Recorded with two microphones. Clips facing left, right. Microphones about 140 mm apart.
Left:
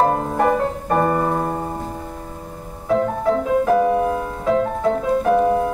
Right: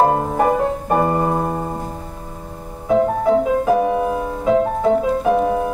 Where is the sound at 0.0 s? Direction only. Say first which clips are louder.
Right 2 dB; 15° right (ahead or behind).